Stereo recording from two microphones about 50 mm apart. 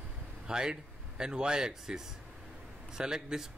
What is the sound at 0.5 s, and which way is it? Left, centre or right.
Speech, centre.